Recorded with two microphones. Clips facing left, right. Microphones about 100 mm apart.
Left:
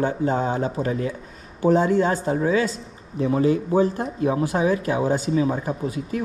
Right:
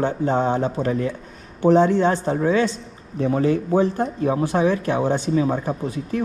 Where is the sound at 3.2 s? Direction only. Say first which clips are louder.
Even; 40° right (ahead or behind).